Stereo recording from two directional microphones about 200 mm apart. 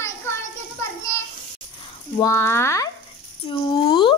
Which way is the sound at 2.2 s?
15° left (ahead or behind).